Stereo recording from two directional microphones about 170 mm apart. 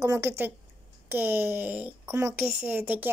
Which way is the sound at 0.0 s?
15° right (ahead or behind).